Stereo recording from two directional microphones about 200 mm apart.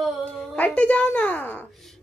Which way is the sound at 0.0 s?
5° left (ahead or behind).